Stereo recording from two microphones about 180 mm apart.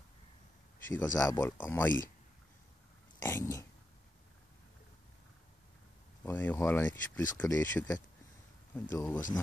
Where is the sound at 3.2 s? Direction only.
15° left (ahead or behind).